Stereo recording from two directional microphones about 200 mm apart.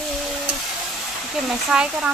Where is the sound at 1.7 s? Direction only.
5° right (ahead or behind).